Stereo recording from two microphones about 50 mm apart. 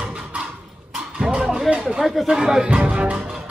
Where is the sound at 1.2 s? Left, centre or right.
Centre.